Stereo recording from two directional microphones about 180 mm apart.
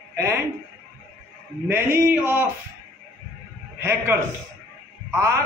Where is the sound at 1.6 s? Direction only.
15° right (ahead or behind).